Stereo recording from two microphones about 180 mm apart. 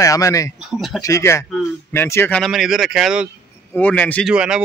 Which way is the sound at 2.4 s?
Centre (ahead or behind).